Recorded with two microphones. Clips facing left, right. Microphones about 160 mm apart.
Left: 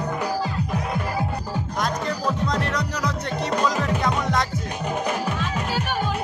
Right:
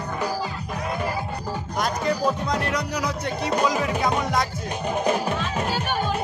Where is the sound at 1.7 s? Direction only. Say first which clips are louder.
Right 3 dB; 5° right (ahead or behind).